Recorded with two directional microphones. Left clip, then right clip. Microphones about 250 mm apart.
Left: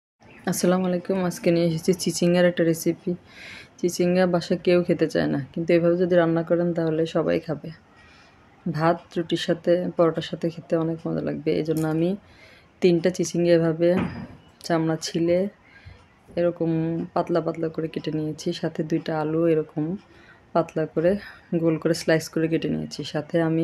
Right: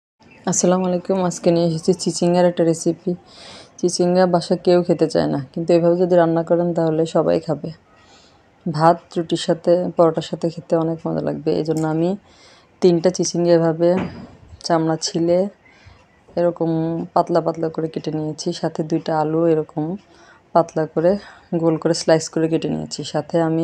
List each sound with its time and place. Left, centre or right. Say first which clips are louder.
0.5 s speech: right 5 dB; centre
13.3 s speech: right 3 dB; centre